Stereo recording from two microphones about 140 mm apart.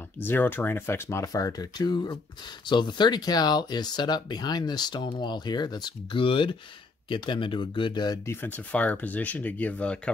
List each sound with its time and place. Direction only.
0.2 s speech: 15° left (ahead or behind); by 8.2 s 30° left (ahead or behind)
8.3 s speech: 15° left (ahead or behind)